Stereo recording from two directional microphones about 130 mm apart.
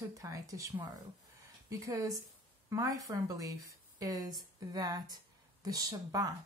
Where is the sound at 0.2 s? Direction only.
25° right (ahead or behind).